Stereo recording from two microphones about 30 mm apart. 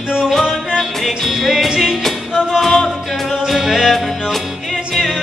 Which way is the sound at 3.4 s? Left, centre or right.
Centre.